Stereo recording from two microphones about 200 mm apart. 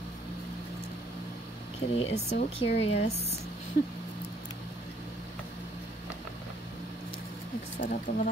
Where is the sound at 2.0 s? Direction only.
30° left (ahead or behind).